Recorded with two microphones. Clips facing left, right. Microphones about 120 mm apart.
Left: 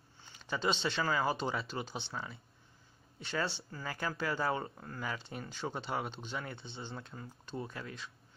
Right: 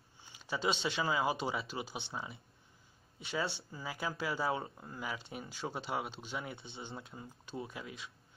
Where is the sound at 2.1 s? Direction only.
20° right (ahead or behind).